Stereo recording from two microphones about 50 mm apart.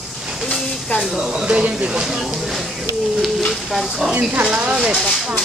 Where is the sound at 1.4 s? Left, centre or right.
Right.